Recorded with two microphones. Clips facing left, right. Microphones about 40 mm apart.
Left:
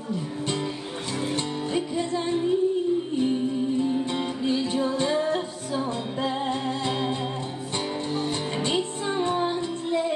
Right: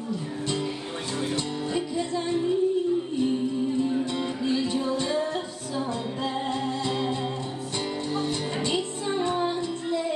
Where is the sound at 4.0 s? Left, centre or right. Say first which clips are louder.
Left 1 dB; left.